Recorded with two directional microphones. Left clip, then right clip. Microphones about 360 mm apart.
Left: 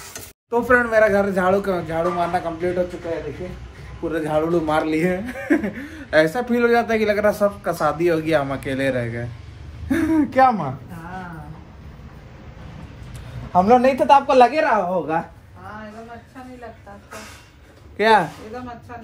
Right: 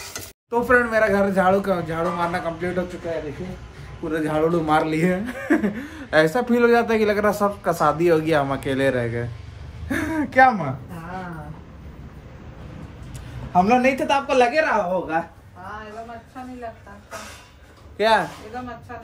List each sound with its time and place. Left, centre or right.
0.1 s speech: centre
4.1 s speech: centre
13.5 s speech: centre
17.9 s a man's voice: centre